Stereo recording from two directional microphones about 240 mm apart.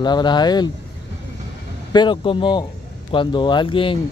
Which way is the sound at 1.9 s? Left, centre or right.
Centre.